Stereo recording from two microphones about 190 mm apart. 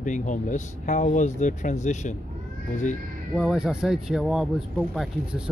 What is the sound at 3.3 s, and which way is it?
Speech, centre (ahead or behind).